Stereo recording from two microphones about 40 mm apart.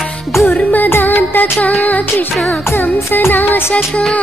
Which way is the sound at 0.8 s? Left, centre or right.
Left.